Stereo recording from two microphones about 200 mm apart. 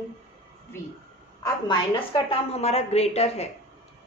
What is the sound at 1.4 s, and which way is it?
A woman's voice, 25° left (ahead or behind).